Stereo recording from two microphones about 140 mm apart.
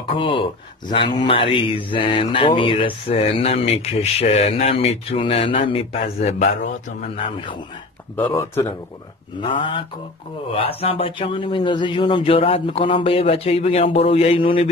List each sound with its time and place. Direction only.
0.1 s speech: 35° left (ahead or behind); by 6.7 s 55° left (ahead or behind)
8.2 s speech: 15° left (ahead or behind)
9.4 s speech: 35° left (ahead or behind)